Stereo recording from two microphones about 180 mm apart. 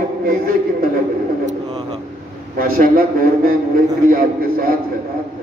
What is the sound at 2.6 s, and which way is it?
A man's voice, 55° right (ahead or behind).